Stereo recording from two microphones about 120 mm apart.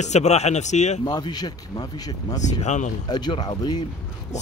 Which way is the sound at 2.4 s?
80° left.